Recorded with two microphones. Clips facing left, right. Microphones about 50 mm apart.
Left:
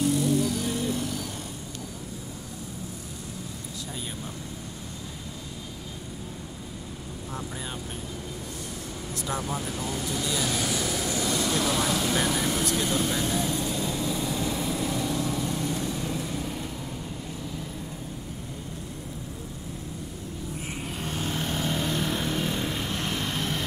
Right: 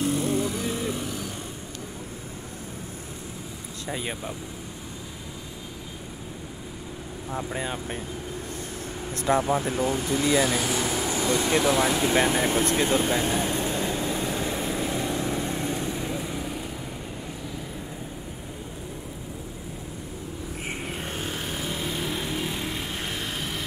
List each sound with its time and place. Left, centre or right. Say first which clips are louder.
0.0 s music: left 1 dB; right
7.5 s speech: right 6 dB; right
9.1 s speech: right 9 dB; right
10.4 s vehicle: right 3 dB; right
21.0 s vehicle: even; right
21.3 s vehicle: left 2 dB; centre